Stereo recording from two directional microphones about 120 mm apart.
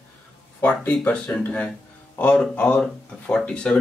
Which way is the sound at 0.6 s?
10° left (ahead or behind).